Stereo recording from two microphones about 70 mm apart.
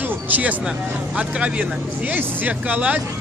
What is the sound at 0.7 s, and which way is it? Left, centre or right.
Speech, centre.